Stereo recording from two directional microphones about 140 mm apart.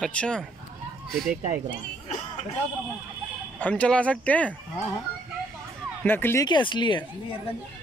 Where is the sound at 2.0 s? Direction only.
50° left (ahead or behind).